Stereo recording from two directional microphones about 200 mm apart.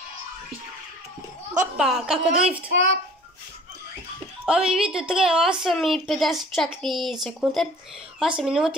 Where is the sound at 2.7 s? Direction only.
65° right (ahead or behind).